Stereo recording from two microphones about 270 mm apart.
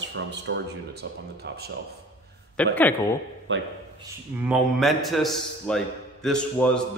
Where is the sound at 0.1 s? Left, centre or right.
Right.